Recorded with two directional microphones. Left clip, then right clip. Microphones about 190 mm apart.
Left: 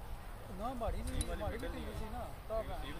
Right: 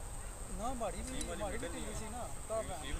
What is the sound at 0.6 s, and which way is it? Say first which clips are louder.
Speech: right 1 dB; 35° right (ahead or behind).